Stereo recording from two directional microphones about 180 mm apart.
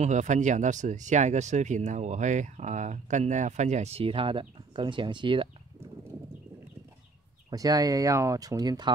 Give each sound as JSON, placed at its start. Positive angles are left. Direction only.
{"t": 0.0, "sound": "speech", "side_deg": -40}
{"t": 7.4, "sound": "speech", "side_deg": -20}